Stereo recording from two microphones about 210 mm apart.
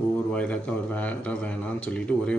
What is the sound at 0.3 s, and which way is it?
A man's voice, 5° left (ahead or behind).